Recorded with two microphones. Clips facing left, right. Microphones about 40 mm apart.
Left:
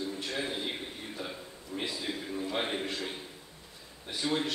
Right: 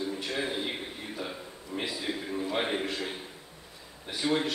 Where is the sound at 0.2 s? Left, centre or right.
Centre.